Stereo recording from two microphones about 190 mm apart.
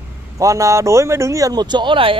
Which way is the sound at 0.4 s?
15° right (ahead or behind).